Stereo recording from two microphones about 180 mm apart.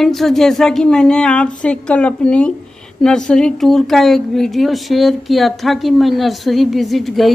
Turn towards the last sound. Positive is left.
turn(degrees=0)  # may be behind; listen again after turning